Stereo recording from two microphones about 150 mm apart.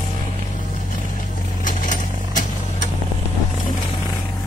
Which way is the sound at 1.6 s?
60° left (ahead or behind).